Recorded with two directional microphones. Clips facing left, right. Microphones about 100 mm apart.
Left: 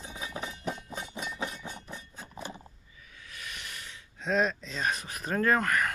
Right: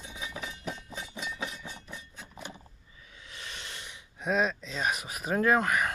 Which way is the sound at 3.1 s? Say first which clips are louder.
Even; 25° right (ahead or behind).